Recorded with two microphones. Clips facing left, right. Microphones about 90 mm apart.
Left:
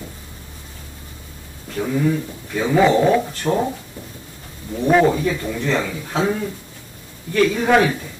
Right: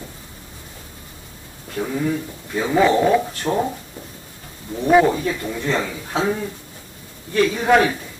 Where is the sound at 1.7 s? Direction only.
5° right (ahead or behind).